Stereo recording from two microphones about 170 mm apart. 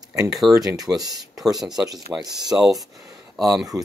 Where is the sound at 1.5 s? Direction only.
Centre (ahead or behind).